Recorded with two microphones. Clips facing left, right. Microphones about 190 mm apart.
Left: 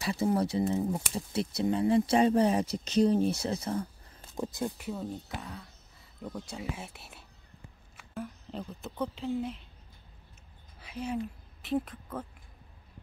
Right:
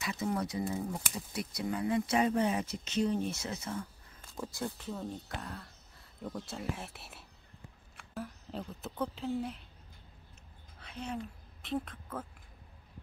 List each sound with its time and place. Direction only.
0.0 s speech: 30° left (ahead or behind)
4.4 s speech: 20° left (ahead or behind); by 9.6 s centre (ahead or behind)
10.8 s a woman's voice: 5° left (ahead or behind)